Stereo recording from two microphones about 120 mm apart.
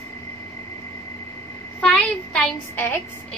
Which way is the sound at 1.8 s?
10° left (ahead or behind).